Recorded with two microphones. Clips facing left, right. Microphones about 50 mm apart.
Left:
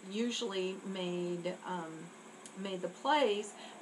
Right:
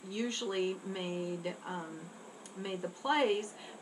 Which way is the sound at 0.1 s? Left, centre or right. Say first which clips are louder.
Even; centre.